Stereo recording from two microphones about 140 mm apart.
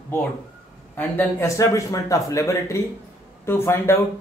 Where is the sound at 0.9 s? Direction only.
15° left (ahead or behind).